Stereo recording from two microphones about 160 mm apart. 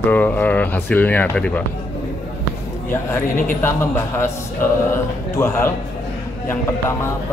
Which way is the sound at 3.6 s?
15° left (ahead or behind).